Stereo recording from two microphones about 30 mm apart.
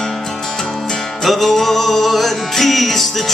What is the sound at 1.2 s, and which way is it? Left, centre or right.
Music, centre.